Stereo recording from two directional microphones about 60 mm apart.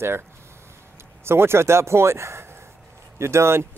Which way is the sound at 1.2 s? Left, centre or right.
Right.